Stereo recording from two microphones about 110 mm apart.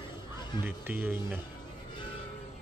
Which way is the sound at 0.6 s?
20° right (ahead or behind).